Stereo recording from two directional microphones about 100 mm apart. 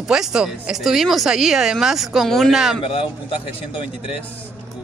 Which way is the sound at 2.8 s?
65° left (ahead or behind).